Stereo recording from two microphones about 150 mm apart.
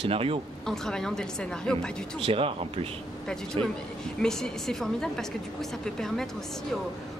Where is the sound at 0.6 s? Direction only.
5° left (ahead or behind).